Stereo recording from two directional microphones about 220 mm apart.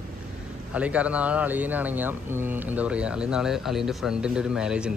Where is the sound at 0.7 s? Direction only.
5° right (ahead or behind).